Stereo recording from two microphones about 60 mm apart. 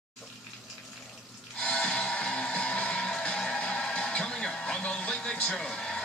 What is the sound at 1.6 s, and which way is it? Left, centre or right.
Music, centre.